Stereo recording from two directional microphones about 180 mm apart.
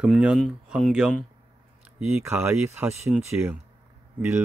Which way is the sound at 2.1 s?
15° right (ahead or behind).